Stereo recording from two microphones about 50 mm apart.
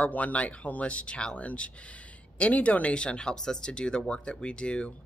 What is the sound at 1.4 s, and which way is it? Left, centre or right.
Speech, left.